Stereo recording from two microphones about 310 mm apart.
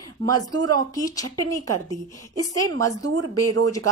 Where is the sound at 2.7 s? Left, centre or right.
Right.